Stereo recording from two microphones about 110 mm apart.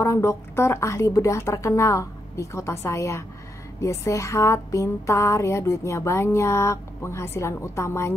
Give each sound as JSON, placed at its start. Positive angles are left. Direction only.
{"t": 0.0, "sound": "speech", "side_deg": 25}